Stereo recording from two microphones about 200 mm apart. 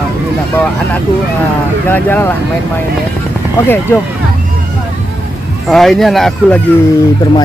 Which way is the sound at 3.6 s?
10° left (ahead or behind).